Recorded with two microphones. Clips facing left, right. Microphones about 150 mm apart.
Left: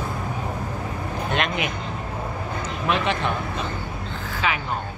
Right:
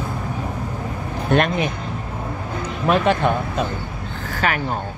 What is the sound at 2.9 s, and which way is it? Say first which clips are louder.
Speech: right 6 dB; 45° right (ahead or behind).